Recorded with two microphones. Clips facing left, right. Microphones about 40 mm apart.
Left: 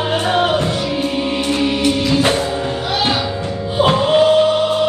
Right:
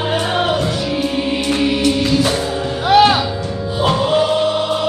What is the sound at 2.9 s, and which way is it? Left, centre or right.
Music, right.